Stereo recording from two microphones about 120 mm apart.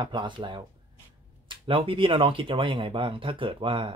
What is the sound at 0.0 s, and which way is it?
Speech, 40° right (ahead or behind).